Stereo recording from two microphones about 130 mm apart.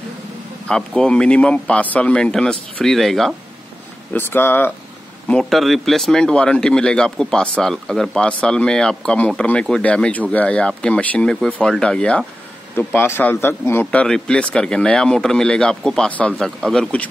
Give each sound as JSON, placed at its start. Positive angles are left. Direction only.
{"t": 0.7, "sound": "speech", "side_deg": 5}
{"t": 4.1, "sound": "speech", "side_deg": 15}
{"t": 5.3, "sound": "speech", "side_deg": 0}
{"t": 12.7, "sound": "speech", "side_deg": 15}
{"t": 14.0, "sound": "speech", "side_deg": 5}